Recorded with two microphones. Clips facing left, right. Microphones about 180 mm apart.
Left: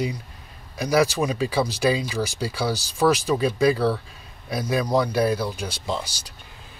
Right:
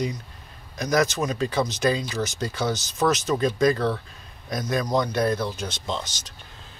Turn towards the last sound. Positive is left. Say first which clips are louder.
# left 2 dB
turn(degrees=10)  # may be behind; listen again after turning